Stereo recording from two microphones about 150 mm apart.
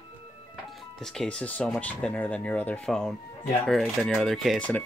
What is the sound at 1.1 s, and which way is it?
Speech, 5° left (ahead or behind).